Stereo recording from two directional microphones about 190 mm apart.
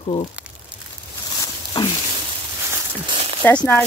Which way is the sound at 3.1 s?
30° right (ahead or behind).